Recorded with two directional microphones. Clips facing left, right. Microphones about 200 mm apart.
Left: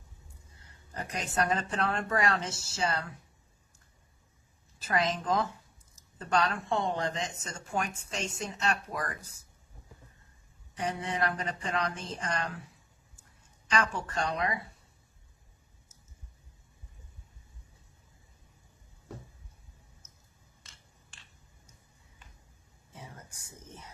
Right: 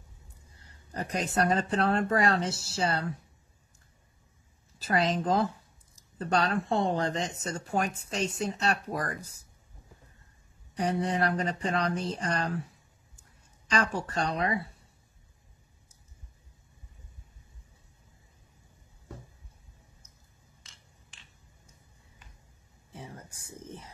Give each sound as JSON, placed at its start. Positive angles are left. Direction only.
{"t": 0.9, "sound": "speech", "side_deg": -35}
{"t": 4.7, "sound": "speech", "side_deg": -35}
{"t": 10.8, "sound": "speech", "side_deg": -35}
{"t": 13.7, "sound": "speech", "side_deg": -35}
{"t": 23.4, "sound": "a sound", "side_deg": -30}